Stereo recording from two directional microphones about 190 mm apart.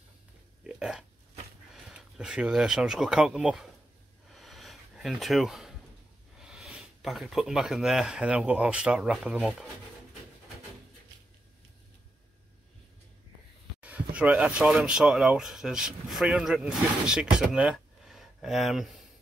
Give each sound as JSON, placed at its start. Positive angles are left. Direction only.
{"t": 0.7, "sound": "burping", "side_deg": -5}
{"t": 1.9, "sound": "speech", "side_deg": -5}
{"t": 4.3, "sound": "a sound", "side_deg": 0}
{"t": 6.4, "sound": "speech", "side_deg": -5}
{"t": 13.7, "sound": "speech", "side_deg": -5}